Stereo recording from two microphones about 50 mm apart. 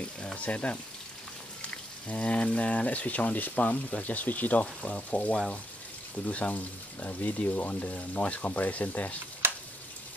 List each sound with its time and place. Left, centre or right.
0.4 s speech: left
9.4 s frying: right